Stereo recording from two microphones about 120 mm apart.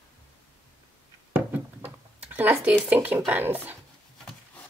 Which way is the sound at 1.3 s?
15° right (ahead or behind).